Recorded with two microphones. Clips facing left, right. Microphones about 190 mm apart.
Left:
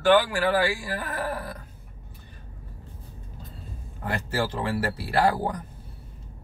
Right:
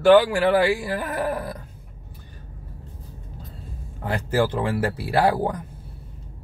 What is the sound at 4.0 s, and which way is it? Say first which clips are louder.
Speech: right 6 dB; 15° right (ahead or behind).